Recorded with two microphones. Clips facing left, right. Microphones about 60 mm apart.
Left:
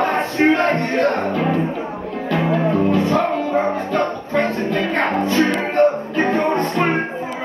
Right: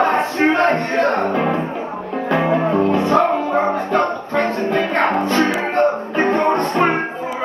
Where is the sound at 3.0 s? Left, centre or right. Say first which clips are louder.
Right 2 dB; centre.